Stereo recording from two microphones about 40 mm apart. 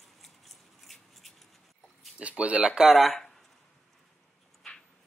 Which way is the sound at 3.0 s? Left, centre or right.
Centre.